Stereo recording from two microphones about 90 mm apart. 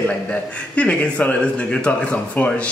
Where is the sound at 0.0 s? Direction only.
15° left (ahead or behind).